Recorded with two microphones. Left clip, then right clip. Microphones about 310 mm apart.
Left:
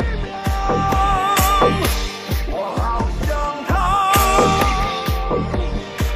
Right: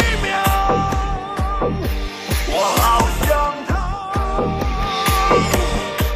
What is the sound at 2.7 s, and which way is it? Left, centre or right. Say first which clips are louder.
Music: right 8 dB; right.